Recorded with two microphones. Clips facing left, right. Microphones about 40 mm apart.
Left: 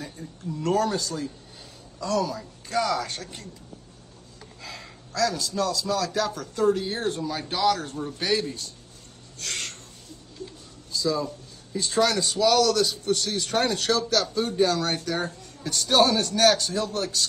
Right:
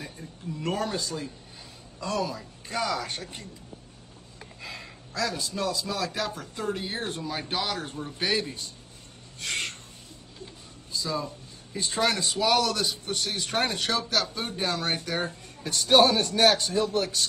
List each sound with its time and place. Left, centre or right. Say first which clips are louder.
0.0 s speech: left 3 dB; centre
2.3 s speech: left 5 dB; centre
4.6 s a sound: even; centre
5.2 s speech: left 4 dB; right